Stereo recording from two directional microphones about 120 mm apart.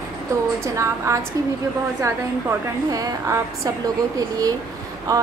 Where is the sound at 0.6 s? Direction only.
25° right (ahead or behind).